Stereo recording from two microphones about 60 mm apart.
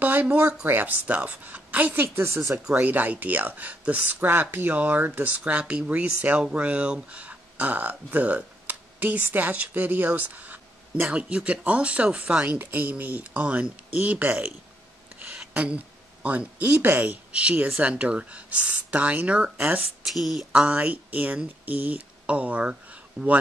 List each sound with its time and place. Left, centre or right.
0.0 s speech: right
2.1 s speech: right
2.5 s speech: centre
2.8 s speech: right
4.3 s speech: right
15.3 s a sound: right
16.8 s speech: right
17.3 s speech: centre
20.1 s a sound: centre
20.5 s speech: right